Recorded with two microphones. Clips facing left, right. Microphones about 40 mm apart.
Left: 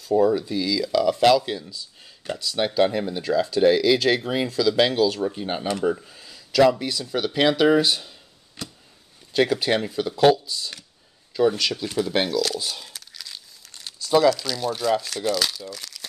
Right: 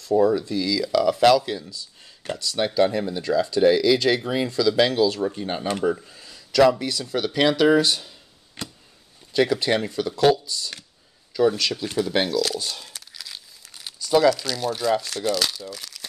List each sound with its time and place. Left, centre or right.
0.1 s speech: centre
5.3 s speech: centre
8.6 s a sound: right
9.3 s speech: centre
12.5 s crumpling: centre
14.1 s speech: centre